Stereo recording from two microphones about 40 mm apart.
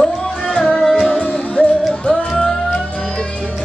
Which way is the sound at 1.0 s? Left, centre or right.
Left.